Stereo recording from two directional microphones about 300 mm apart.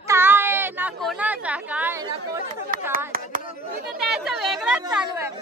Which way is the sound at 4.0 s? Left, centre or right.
Centre.